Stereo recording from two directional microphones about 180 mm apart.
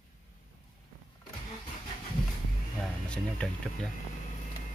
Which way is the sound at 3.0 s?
5° left (ahead or behind).